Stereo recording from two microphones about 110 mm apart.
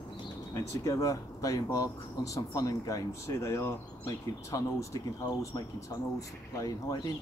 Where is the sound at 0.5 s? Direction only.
30° left (ahead or behind).